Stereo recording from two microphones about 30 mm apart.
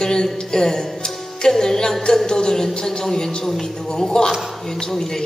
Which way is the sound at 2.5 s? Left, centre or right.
Centre.